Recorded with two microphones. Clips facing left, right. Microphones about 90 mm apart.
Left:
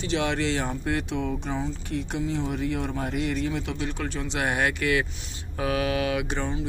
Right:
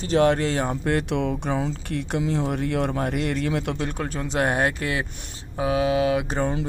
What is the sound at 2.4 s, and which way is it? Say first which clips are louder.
Speech: right 4 dB; 55° right (ahead or behind).